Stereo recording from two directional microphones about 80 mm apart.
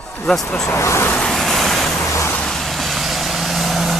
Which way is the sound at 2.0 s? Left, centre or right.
Left.